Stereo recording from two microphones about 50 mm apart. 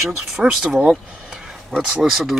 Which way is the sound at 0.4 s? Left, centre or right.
Centre.